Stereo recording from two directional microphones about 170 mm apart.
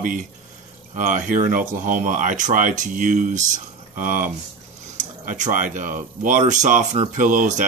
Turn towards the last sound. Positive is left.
turn(degrees=-50)  # may be behind; listen again after turning